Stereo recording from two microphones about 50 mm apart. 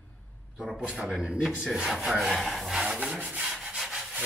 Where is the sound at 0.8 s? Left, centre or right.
Right.